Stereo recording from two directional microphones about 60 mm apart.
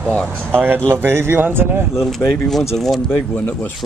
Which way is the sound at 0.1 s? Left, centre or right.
Centre.